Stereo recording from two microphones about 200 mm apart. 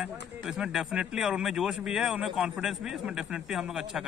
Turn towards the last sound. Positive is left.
turn(degrees=0)  # may be behind; listen again after turning